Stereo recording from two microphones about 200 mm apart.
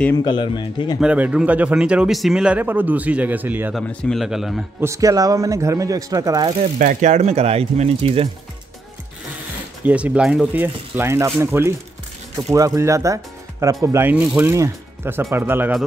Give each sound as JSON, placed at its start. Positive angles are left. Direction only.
{"t": 0.1, "sound": "speech", "side_deg": 25}
{"t": 0.9, "sound": "speech", "side_deg": -5}
{"t": 3.8, "sound": "speech", "side_deg": 5}
{"t": 4.8, "sound": "speech", "side_deg": -15}
{"t": 6.6, "sound": "speech", "side_deg": -40}
{"t": 9.8, "sound": "speech", "side_deg": -5}